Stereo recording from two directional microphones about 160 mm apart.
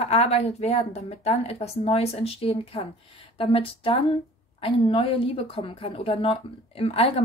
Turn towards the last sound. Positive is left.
turn(degrees=40)  # may be behind; listen again after turning